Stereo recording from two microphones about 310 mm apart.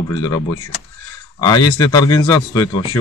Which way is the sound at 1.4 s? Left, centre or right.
Centre.